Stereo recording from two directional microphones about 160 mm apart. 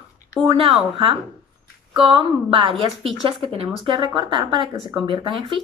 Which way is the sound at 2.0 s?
35° right (ahead or behind).